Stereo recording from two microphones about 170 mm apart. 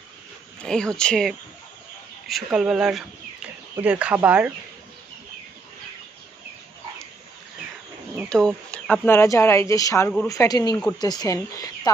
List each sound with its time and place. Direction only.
0.6 s speech: 5° left (ahead or behind)
8.3 s speech: 5° left (ahead or behind)
9.1 s speech: 15° left (ahead or behind)